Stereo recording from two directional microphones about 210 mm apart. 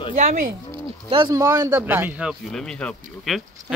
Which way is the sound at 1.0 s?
25° right (ahead or behind).